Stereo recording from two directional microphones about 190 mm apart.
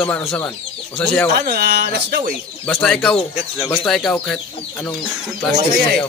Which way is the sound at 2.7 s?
5° left (ahead or behind).